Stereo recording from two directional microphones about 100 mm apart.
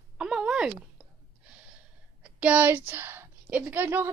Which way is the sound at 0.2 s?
10° right (ahead or behind).